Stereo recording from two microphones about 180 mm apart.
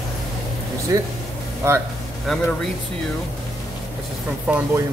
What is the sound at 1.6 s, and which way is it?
Speech, 15° right (ahead or behind).